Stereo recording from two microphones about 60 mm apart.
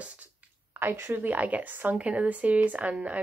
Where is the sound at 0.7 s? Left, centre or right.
Right.